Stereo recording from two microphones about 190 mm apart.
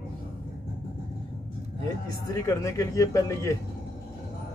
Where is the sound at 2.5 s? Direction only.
15° left (ahead or behind).